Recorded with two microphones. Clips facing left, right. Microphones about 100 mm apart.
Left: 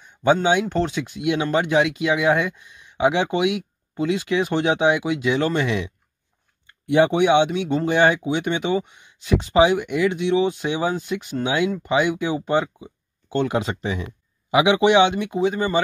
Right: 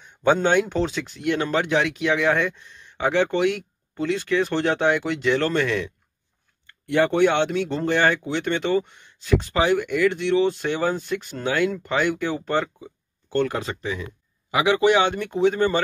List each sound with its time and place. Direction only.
0.0 s speech: centre (ahead or behind)
6.7 s a sound: 15° left (ahead or behind)
7.1 s speech: 10° left (ahead or behind)